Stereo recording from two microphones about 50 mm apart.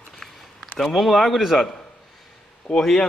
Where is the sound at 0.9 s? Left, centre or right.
Centre.